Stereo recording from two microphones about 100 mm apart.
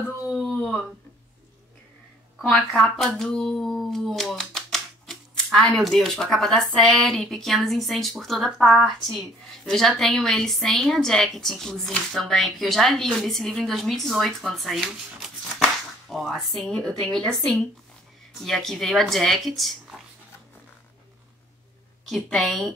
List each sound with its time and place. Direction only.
2.3 s a woman's voice: 5° left (ahead or behind)
22.0 s speech: centre (ahead or behind)